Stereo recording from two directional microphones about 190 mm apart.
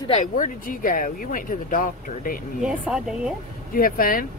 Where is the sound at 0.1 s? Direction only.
40° left (ahead or behind).